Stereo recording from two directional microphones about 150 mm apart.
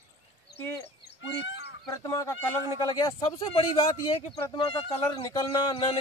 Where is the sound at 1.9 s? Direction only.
20° left (ahead or behind).